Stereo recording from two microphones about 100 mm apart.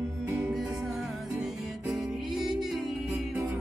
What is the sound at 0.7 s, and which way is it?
Music, centre (ahead or behind).